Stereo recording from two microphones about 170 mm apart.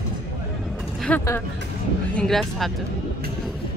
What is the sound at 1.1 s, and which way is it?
Speech, 5° left (ahead or behind).